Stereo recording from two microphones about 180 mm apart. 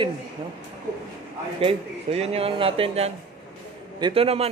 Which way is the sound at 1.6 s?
35° right (ahead or behind).